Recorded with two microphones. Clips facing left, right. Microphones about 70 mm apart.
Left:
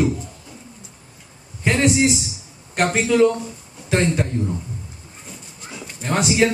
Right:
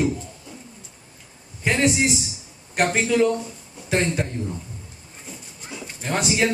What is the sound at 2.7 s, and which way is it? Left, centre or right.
Speech, centre.